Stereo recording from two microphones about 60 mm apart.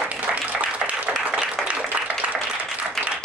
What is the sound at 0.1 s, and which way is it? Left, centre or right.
Applause, right.